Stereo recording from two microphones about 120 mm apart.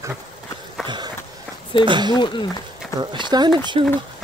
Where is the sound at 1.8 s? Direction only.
40° right (ahead or behind).